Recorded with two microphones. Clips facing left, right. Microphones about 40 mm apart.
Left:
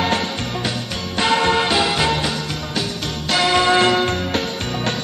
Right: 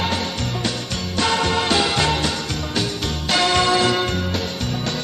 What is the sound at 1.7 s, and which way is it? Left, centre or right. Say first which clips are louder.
Music: left 1 dB; centre.